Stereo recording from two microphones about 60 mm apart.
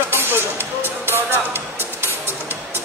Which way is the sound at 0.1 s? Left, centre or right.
Right.